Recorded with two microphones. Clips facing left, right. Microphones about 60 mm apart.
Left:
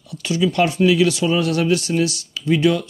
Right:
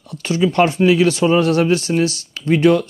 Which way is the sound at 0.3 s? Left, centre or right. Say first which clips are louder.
Right 3 dB; right.